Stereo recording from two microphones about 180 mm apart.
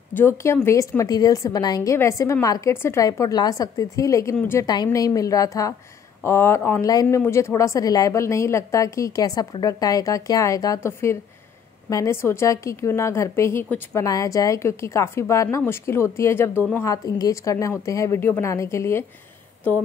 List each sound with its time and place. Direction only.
0.1 s a woman's voice: 15° left (ahead or behind)